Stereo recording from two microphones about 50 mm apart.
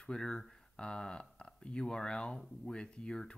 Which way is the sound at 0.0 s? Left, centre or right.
Centre.